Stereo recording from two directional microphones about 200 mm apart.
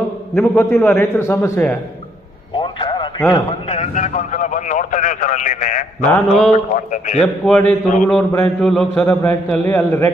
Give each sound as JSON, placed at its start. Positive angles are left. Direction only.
{"t": 0.3, "sound": "a man's voice", "side_deg": 10}
{"t": 2.5, "sound": "a sound", "side_deg": 25}
{"t": 3.3, "sound": "a man's voice", "side_deg": 30}
{"t": 6.0, "sound": "mantra", "side_deg": 5}
{"t": 6.5, "sound": "a man's voice", "side_deg": 40}
{"t": 7.4, "sound": "a man's voice", "side_deg": 5}